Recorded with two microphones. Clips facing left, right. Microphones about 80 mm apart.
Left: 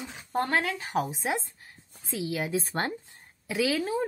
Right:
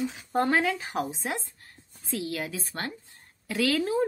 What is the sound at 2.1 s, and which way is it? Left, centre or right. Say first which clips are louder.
Speech: left 2 dB; centre.